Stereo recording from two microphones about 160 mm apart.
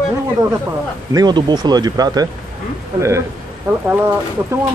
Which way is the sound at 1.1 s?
25° right (ahead or behind).